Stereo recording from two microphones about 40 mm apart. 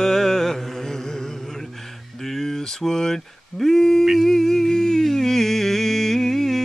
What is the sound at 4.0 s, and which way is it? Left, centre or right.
Humming, centre.